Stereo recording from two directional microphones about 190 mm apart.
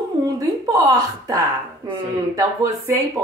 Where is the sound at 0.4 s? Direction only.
20° right (ahead or behind).